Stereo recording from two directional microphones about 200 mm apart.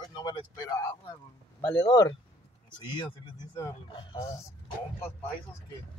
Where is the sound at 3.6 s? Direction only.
25° left (ahead or behind).